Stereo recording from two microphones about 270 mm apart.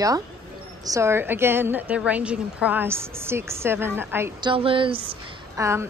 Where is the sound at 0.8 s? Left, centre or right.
Centre.